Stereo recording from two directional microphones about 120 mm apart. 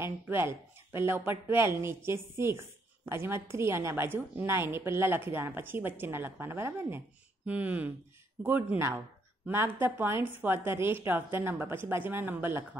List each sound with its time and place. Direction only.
0.0 s a woman's voice: 20° right (ahead or behind)